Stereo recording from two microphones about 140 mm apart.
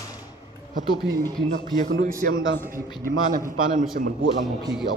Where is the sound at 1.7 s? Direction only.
75° right (ahead or behind).